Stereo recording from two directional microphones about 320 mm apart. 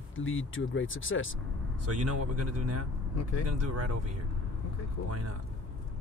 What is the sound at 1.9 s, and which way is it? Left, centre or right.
Speech, right.